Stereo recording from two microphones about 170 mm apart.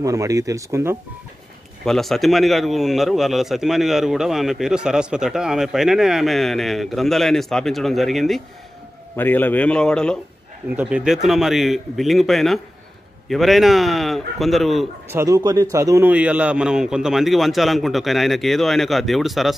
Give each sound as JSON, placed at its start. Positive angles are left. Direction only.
{"t": 0.0, "sound": "speech", "side_deg": -20}
{"t": 1.9, "sound": "speech", "side_deg": 0}
{"t": 9.1, "sound": "a man's voice", "side_deg": 10}
{"t": 10.7, "sound": "speech", "side_deg": -10}
{"t": 15.0, "sound": "a man's voice", "side_deg": -15}